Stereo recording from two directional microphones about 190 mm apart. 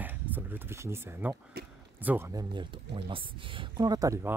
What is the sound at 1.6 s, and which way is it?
Speech, 55° right (ahead or behind).